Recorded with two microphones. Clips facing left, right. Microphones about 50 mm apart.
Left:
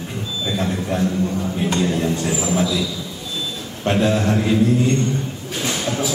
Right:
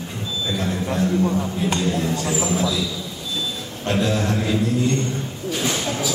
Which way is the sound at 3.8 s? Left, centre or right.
Left.